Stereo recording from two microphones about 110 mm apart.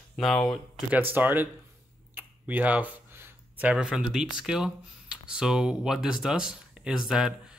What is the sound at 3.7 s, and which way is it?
Speech, 5° right (ahead or behind).